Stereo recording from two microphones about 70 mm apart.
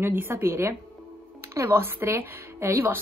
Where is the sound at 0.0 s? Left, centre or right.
Right.